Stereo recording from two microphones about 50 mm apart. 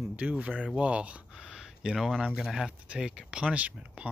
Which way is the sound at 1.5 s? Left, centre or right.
Centre.